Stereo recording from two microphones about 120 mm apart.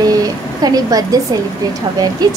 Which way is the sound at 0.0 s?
30° right (ahead or behind).